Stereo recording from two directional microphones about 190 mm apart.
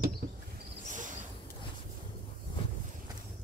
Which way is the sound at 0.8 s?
40° right (ahead or behind).